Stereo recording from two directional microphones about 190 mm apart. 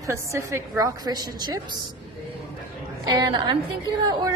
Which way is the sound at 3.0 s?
20° right (ahead or behind).